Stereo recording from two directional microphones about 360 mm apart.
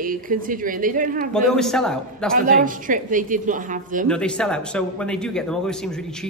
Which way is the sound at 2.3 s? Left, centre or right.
Right.